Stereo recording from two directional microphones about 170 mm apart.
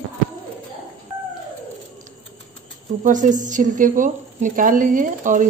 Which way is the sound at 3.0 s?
50° right (ahead or behind).